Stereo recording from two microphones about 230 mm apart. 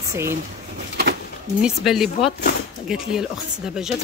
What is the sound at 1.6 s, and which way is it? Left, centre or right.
Speech, centre.